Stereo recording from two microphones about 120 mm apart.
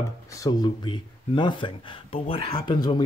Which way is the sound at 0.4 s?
35° left (ahead or behind).